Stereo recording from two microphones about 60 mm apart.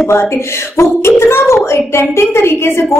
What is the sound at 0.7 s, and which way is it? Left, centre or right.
A woman's voice, left.